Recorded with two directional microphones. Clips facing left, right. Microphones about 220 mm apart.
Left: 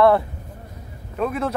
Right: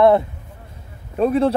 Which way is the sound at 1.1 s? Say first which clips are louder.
Right 7 dB; 30° right (ahead or behind).